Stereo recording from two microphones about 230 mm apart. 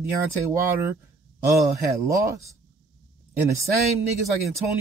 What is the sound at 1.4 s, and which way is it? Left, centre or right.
Speech, centre.